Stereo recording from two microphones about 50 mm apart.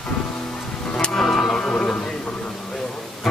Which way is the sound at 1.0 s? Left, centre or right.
Centre.